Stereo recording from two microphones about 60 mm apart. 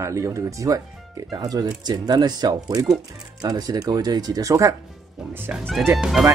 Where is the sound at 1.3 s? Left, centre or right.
Right.